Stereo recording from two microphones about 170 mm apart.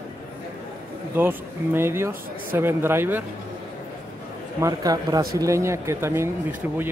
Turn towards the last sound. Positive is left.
turn(degrees=-10)  # may be behind; listen again after turning